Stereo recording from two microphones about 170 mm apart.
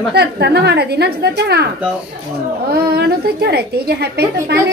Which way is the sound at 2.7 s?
70° right (ahead or behind).